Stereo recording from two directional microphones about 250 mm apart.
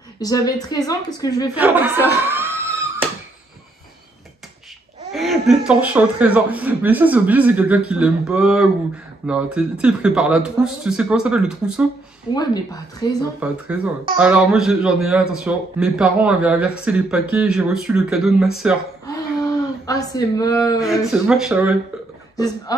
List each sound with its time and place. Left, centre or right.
0.2 s a woman's voice: centre
1.5 s a sound: centre
5.1 s a man's voice: centre
12.4 s a woman's voice: centre
13.4 s a man's voice: centre
19.0 s a sound: centre
20.8 s a man's voice: centre
22.7 s a woman's voice: centre